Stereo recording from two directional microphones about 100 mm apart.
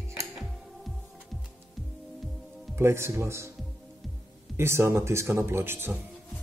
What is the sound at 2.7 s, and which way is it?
Speech, 25° right (ahead or behind).